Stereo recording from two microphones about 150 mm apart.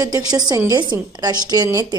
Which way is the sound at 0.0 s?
25° right (ahead or behind).